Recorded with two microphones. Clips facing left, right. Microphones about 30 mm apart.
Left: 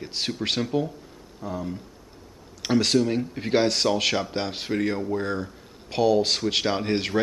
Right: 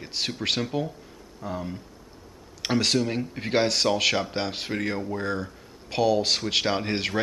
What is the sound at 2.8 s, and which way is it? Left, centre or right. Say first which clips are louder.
Speech: left 3 dB; centre.